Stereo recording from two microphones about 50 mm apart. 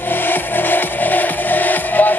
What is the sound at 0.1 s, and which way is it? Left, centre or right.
Music, left.